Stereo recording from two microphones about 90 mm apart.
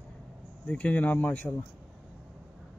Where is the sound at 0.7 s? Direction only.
15° left (ahead or behind).